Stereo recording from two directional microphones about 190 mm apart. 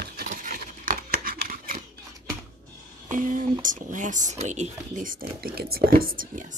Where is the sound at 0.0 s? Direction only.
50° right (ahead or behind).